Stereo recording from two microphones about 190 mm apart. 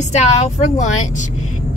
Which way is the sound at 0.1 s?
35° left (ahead or behind).